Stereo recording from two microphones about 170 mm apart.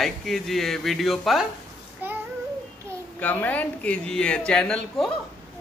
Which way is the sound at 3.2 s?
10° left (ahead or behind).